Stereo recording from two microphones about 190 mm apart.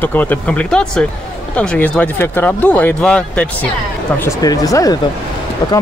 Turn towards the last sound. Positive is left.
turn(degrees=20)  # may be behind; listen again after turning